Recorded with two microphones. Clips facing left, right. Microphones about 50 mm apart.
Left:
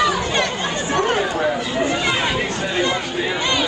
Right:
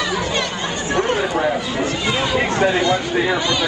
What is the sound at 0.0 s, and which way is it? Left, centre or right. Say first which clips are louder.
Chatter: left 2 dB; left.